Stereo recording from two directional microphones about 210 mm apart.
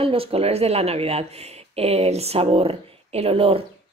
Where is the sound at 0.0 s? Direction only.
25° right (ahead or behind).